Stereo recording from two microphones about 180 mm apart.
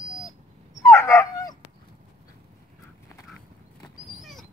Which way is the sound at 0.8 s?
15° left (ahead or behind).